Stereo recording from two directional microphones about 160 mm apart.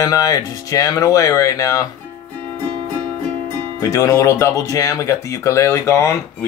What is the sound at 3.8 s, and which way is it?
Speech, 20° left (ahead or behind).